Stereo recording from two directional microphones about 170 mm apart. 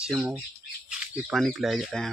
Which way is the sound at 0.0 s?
5° right (ahead or behind).